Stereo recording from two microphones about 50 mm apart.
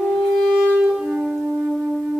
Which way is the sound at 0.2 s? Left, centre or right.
Centre.